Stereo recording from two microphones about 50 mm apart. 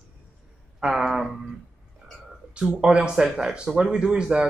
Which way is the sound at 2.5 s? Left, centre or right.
Right.